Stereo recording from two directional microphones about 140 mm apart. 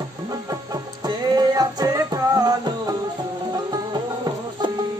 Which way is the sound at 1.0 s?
30° right (ahead or behind).